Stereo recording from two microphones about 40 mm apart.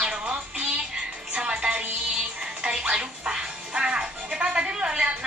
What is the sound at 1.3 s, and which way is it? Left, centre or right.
Music, right.